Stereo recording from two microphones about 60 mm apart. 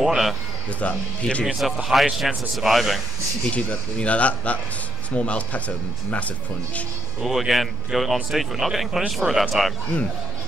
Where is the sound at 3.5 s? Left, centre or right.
Left.